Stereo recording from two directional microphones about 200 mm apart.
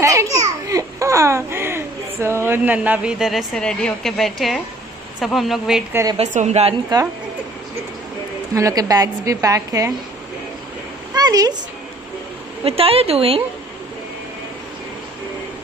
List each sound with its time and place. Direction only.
0.0 s a child's voice: 15° right (ahead or behind)
6.1 s a woman's voice: 35° right (ahead or behind)
6.9 s speech: 20° right (ahead or behind)
8.5 s a woman's voice: 15° right (ahead or behind)
11.1 s a sound: 20° right (ahead or behind)
12.6 s speech: 30° right (ahead or behind)